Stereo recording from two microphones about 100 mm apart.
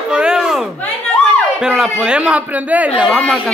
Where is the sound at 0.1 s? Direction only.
10° right (ahead or behind).